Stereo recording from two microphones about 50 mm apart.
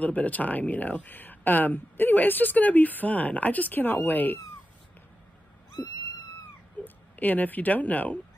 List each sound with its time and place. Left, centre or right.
0.0 s speech: left
6.8 s cat: left
7.2 s speech: left